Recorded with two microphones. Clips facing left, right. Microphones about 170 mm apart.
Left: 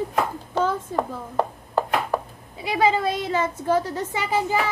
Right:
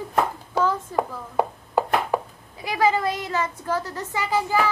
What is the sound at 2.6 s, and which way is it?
A woman's voice, 25° left (ahead or behind).